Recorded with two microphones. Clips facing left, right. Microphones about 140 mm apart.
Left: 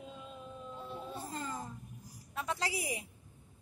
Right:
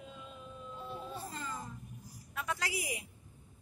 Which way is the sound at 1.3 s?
40° left (ahead or behind).